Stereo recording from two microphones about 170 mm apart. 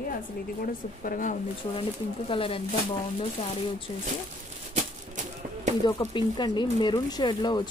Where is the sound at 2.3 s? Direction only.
30° left (ahead or behind).